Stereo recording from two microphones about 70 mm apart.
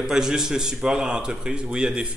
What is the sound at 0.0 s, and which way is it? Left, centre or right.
A man's voice, centre.